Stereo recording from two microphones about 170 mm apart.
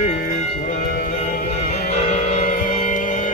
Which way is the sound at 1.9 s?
40° left (ahead or behind).